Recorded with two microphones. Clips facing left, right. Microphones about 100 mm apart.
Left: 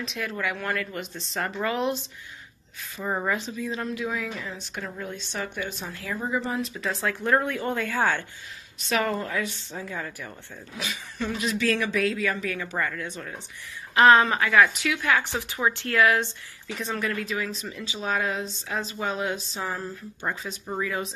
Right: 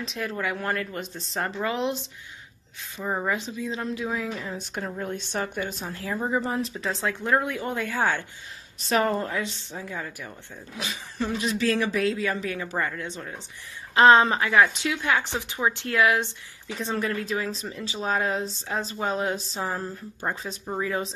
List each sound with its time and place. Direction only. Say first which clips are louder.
0.0 s speech: right 1 dB; 35° right (ahead or behind)
1.6 s speech: left 1 dB; 20° right (ahead or behind)
3.0 s speech: even; 5° right (ahead or behind)
3.3 s speech: even; 15° right (ahead or behind)
5.0 s a woman's voice: right 4 dB; 50° right (ahead or behind)
5.9 s speech: right 2 dB; 30° right (ahead or behind); by 8.3 s 15° right (ahead or behind)
8.8 s speech: right 2 dB; 35° right (ahead or behind)
9.8 s speech: left 1 dB; 10° right (ahead or behind)
10.8 s speech: right 1 dB; 30° right (ahead or behind)
16.7 s speech: right 1 dB; 30° right (ahead or behind)
20.4 s speech: right 1 dB; 20° right (ahead or behind)